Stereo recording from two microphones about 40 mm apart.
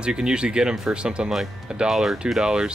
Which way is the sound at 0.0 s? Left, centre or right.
Centre.